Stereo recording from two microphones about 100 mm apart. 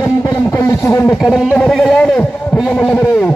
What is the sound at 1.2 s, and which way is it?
Speech, 5° right (ahead or behind).